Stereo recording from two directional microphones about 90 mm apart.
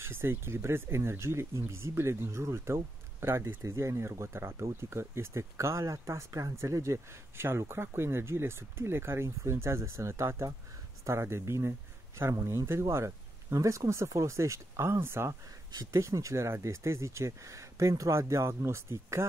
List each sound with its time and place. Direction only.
0.0 s speech: 25° right (ahead or behind)